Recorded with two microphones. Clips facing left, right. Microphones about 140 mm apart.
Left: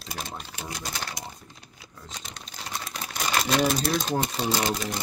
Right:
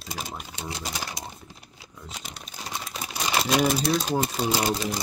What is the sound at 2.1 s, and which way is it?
Crumpling, 5° right (ahead or behind).